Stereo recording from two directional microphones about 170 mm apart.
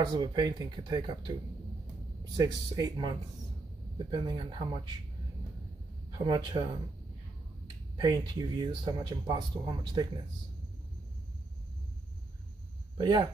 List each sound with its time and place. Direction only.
0.0 s speech: 25° right (ahead or behind)
6.1 s speech: 25° right (ahead or behind)
8.0 s speech: 25° right (ahead or behind)
12.9 s speech: 25° right (ahead or behind)